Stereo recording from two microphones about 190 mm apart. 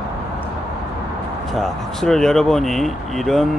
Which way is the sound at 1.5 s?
Centre (ahead or behind).